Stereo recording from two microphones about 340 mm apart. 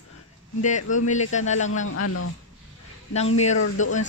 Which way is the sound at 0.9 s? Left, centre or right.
Left.